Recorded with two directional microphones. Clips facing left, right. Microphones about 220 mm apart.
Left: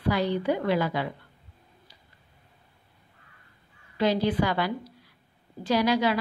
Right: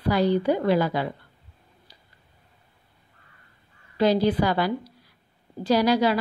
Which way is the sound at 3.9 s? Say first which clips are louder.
Right 4 dB; 35° right (ahead or behind).